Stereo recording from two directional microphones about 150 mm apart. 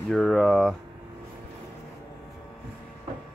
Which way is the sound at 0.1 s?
Centre (ahead or behind).